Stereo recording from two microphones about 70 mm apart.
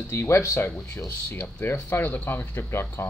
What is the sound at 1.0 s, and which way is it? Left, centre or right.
Speech, left.